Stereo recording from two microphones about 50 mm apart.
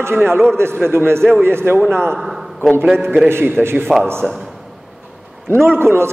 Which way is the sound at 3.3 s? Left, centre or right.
Right.